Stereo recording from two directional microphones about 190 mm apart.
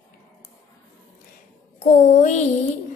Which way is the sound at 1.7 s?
40° left (ahead or behind).